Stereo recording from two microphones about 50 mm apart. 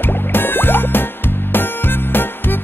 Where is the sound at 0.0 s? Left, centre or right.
Left.